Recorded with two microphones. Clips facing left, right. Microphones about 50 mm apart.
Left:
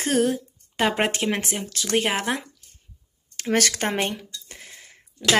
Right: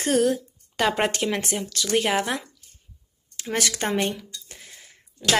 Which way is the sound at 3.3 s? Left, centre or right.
Left.